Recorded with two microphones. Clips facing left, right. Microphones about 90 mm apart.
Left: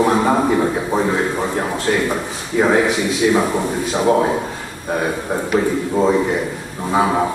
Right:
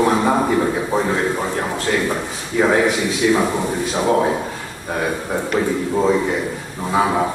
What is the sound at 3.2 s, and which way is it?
Speech, 15° left (ahead or behind).